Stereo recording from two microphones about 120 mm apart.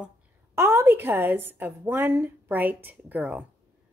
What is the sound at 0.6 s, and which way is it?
A woman's voice, 25° right (ahead or behind).